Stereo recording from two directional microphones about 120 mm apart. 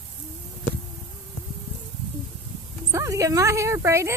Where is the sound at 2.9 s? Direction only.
25° right (ahead or behind).